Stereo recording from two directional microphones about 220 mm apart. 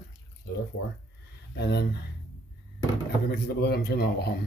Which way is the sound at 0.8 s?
75° left (ahead or behind).